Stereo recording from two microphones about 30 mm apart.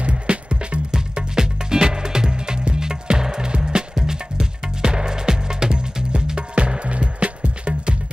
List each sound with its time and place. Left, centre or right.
0.0 s music: right
1.1 s music: right